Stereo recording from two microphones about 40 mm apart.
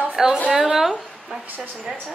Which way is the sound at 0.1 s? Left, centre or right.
Centre.